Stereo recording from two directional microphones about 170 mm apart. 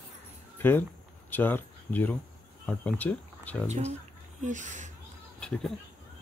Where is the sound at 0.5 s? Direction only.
10° left (ahead or behind).